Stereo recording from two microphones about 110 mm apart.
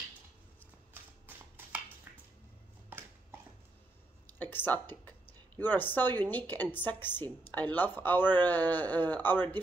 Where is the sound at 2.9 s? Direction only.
20° right (ahead or behind).